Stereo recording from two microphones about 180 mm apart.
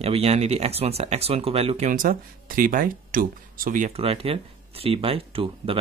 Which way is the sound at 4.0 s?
30° right (ahead or behind).